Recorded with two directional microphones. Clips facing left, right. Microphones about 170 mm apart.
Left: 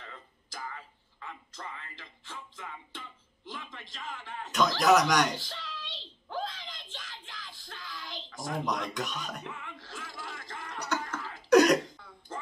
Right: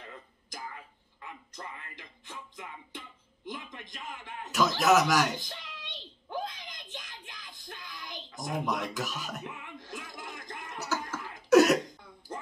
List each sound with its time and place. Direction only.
0.0 s a sound: 15° right (ahead or behind)
4.5 s speech: 5° right (ahead or behind)
5.3 s a sound: 15° right (ahead or behind)
8.6 s speech: 5° right (ahead or behind)
9.5 s music: 15° right (ahead or behind)
10.8 s music: 5° right (ahead or behind)
11.5 s throat clearing: 5° right (ahead or behind)